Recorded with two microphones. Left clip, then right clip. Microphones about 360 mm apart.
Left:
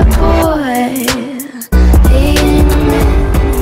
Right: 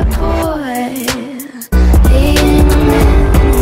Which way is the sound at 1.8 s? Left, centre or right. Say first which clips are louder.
Left 1 dB; centre.